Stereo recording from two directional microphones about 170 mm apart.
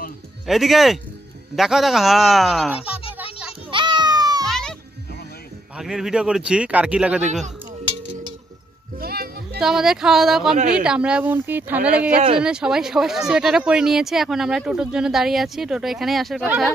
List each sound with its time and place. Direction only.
0.5 s speech: centre (ahead or behind)
3.7 s baby cry: 25° right (ahead or behind)
4.5 s music: 5° left (ahead or behind)
5.8 s speech: 5° right (ahead or behind)
9.0 s music: 65° right (ahead or behind)
9.6 s speech: 5° right (ahead or behind)